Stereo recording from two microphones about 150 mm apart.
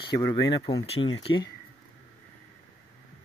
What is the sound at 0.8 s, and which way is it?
Speech, 40° left (ahead or behind).